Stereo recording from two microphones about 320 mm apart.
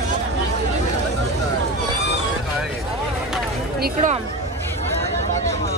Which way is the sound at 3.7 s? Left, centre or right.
Right.